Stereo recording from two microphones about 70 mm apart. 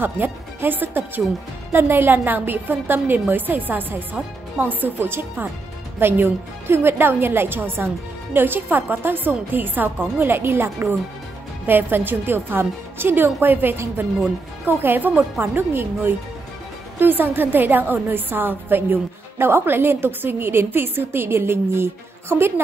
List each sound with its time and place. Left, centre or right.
0.0 s a woman's voice: right